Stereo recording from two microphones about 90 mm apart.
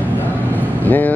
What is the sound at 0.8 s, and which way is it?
Vehicle, 20° left (ahead or behind).